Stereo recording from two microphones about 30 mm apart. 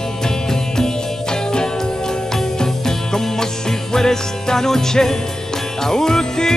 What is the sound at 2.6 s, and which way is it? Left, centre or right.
Music, centre.